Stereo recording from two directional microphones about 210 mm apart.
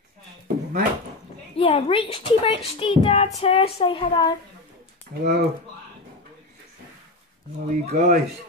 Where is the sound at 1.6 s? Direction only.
25° left (ahead or behind).